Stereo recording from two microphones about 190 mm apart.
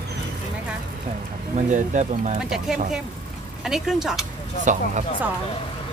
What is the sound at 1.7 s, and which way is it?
Speech, 40° right (ahead or behind).